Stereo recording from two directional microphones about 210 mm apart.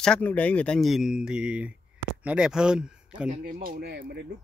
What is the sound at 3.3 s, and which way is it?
Speech, 40° right (ahead or behind).